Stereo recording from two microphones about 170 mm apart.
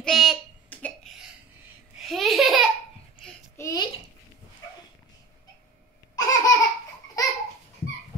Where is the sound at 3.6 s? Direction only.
20° left (ahead or behind).